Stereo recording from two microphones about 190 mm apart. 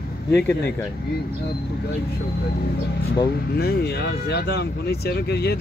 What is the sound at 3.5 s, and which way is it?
Speech, 55° left (ahead or behind).